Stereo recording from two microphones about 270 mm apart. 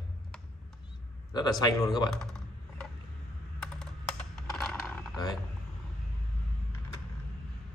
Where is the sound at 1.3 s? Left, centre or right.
Centre.